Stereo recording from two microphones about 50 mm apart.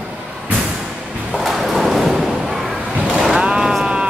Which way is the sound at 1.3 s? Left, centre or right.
Centre.